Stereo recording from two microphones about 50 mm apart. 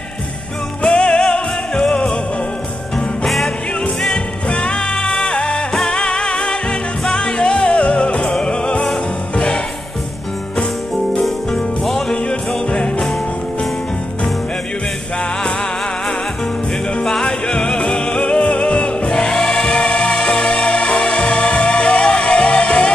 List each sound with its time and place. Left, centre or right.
0.8 s music: centre
4.5 s music: left
11.1 s music: centre
12.3 s music: centre
17.0 s music: centre